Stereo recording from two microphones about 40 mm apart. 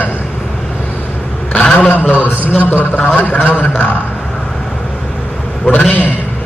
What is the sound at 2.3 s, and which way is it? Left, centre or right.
Speech, left.